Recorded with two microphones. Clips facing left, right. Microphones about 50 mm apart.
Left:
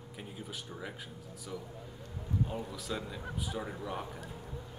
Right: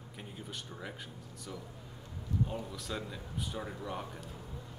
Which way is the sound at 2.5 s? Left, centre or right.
Centre.